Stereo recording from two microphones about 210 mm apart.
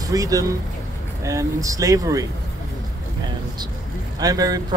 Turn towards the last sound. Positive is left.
turn(degrees=-15)  # may be behind; listen again after turning